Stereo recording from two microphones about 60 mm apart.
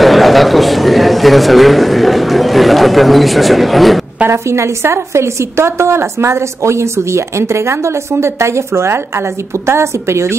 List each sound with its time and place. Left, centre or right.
0.0 s a man's voice: centre
4.3 s a woman's voice: right